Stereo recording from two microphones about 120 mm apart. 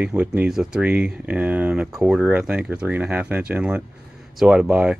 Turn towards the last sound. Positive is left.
turn(degrees=-10)  # may be behind; listen again after turning